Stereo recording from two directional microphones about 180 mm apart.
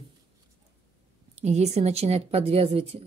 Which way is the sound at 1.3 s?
40° right (ahead or behind).